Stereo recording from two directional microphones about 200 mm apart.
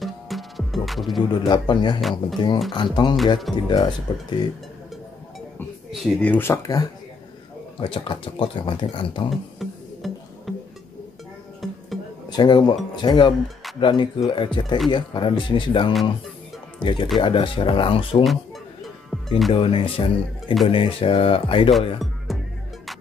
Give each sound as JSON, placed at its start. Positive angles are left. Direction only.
{"t": 0.0, "sound": "music", "side_deg": 0}
{"t": 1.3, "sound": "speech", "side_deg": 20}
{"t": 2.0, "sound": "speech", "side_deg": 0}
{"t": 2.3, "sound": "speech", "side_deg": 20}
{"t": 5.9, "sound": "speech", "side_deg": 5}
{"t": 9.3, "sound": "music", "side_deg": 0}
{"t": 11.6, "sound": "music", "side_deg": 0}
{"t": 12.3, "sound": "speech", "side_deg": 20}
{"t": 19.0, "sound": "music", "side_deg": 0}
{"t": 19.5, "sound": "speech", "side_deg": 25}
{"t": 22.3, "sound": "music", "side_deg": 0}